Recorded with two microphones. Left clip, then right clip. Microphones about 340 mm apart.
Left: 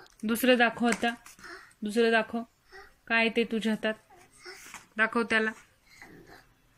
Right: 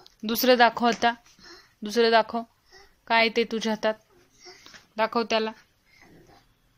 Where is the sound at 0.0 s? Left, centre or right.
Centre.